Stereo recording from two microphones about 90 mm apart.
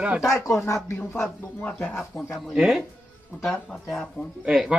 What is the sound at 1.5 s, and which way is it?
Speech, 10° left (ahead or behind).